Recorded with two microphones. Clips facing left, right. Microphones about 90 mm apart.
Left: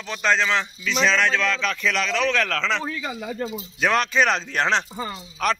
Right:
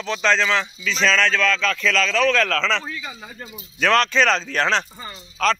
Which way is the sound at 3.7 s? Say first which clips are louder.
Right 3 dB; 10° left (ahead or behind).